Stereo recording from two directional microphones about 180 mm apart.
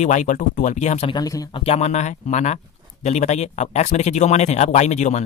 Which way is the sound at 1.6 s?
35° left (ahead or behind).